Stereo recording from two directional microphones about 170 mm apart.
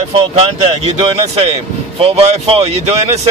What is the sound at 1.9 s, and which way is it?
Speech, 35° right (ahead or behind).